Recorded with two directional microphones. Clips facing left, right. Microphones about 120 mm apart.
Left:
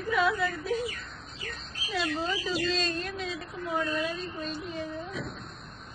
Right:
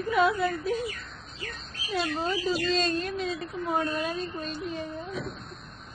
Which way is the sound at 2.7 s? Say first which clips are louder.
Right 4 dB; 45° right (ahead or behind).